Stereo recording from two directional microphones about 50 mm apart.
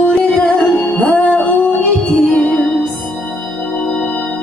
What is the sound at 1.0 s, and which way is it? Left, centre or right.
Music, left.